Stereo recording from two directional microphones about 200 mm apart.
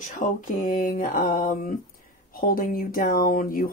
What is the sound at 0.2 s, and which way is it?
Speech, 40° left (ahead or behind).